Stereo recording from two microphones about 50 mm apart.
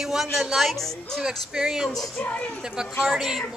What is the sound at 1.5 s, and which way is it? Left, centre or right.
Speech, centre.